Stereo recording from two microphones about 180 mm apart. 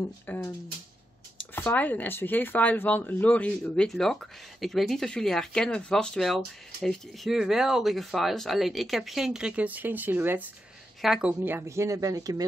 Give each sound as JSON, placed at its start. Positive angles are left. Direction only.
{"t": 0.3, "sound": "a woman's voice", "side_deg": 10}